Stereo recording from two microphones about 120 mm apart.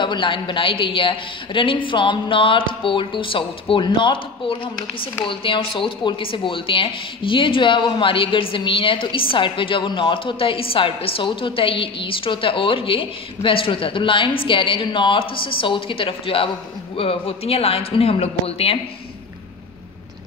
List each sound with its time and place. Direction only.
0.0 s speech: 40° left (ahead or behind)